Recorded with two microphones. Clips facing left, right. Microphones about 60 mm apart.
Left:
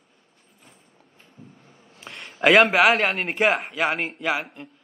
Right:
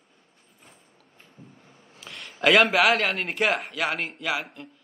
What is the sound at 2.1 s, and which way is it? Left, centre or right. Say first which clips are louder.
A man's voice: left 3 dB; centre.